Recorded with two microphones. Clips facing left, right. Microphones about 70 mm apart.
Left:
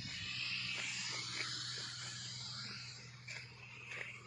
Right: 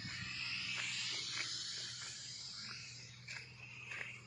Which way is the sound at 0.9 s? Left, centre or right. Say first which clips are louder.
Even; left.